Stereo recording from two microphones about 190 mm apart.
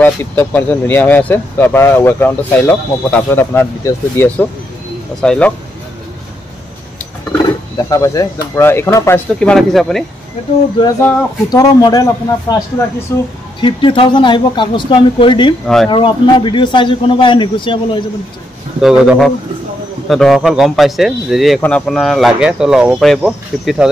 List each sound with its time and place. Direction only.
0.0 s a man's voice: 10° left (ahead or behind)
7.7 s speech: 15° left (ahead or behind); by 10.0 s centre (ahead or behind)
11.5 s speech: 20° left (ahead or behind)
13.6 s speech: 25° left (ahead or behind)
15.6 s a man's voice: centre (ahead or behind)
15.9 s speech: 25° left (ahead or behind)
18.8 s a man's voice: centre (ahead or behind)